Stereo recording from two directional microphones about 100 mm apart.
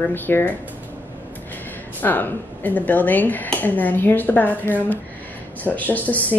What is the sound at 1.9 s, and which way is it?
A woman's voice, 20° left (ahead or behind).